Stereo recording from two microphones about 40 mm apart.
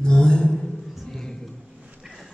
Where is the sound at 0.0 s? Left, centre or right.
Left.